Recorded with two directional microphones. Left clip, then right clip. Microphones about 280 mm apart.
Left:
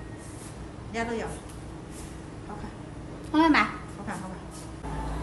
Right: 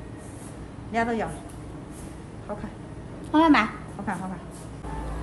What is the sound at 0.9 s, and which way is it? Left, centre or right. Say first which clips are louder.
Speech: right 5 dB; centre.